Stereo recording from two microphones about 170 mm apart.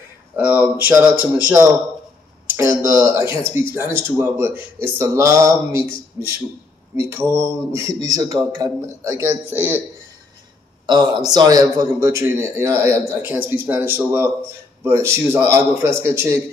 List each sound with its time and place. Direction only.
0.4 s a man's voice: 10° right (ahead or behind)
2.5 s a man's voice: 15° right (ahead or behind)
10.9 s a man's voice: 25° right (ahead or behind)